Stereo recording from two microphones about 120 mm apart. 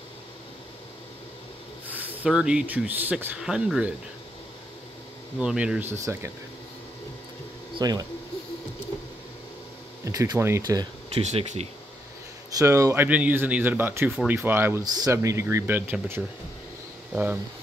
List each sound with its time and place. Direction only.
1.9 s speech: 15° right (ahead or behind)
5.4 s speech: 5° right (ahead or behind); by 6.3 s 25° right (ahead or behind)
7.7 s speech: 35° right (ahead or behind)
10.0 s speech: 30° right (ahead or behind)
11.1 s speech: 60° right (ahead or behind)
12.5 s speech: 25° right (ahead or behind)